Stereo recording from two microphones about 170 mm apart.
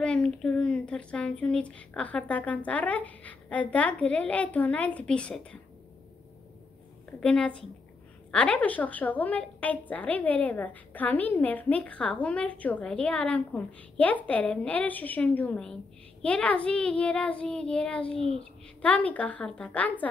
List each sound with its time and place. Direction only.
0.0 s a woman's voice: 5° left (ahead or behind)
7.1 s a woman's voice: 5° left (ahead or behind)